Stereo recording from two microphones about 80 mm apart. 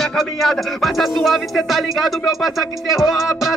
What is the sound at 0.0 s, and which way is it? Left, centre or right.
Speech, centre.